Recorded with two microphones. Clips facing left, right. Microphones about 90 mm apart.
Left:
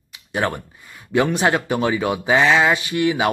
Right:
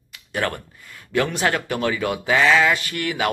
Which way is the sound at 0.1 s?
20° left (ahead or behind).